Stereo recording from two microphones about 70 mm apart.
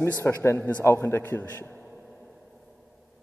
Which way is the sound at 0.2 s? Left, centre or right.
Left.